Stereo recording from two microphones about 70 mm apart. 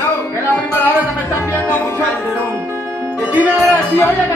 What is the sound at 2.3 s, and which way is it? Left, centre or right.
Music, right.